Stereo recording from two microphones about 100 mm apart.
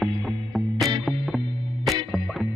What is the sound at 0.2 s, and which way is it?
Music, centre (ahead or behind).